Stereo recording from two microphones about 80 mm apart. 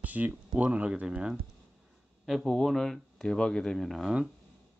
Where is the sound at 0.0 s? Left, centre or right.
Centre.